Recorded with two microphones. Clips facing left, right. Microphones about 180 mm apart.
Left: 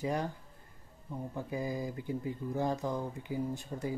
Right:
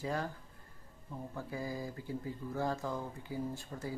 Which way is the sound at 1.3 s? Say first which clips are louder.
Left 4 dB; 20° left (ahead or behind).